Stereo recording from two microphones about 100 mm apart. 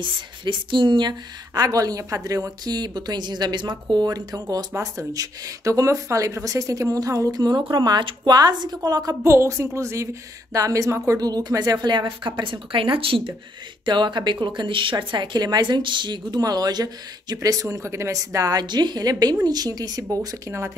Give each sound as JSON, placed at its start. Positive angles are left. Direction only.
{"t": 0.0, "sound": "speech", "side_deg": -55}
{"t": 13.8, "sound": "speech", "side_deg": -50}